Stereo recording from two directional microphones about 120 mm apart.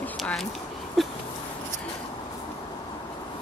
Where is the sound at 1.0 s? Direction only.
Centre (ahead or behind).